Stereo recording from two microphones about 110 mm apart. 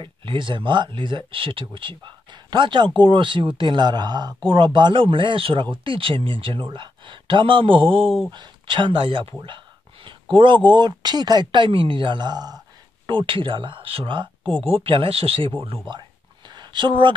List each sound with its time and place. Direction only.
0.0 s speech: 50° right (ahead or behind)
14.4 s speech: 5° left (ahead or behind)
14.7 s speech: 55° right (ahead or behind)
16.4 s a sound: 45° right (ahead or behind)